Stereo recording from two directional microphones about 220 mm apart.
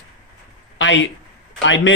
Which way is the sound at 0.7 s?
55° left (ahead or behind).